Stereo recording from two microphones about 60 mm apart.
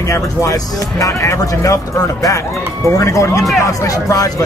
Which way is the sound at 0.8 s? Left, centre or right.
Left.